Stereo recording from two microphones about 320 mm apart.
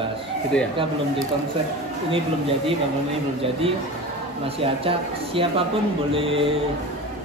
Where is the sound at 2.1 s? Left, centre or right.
Centre.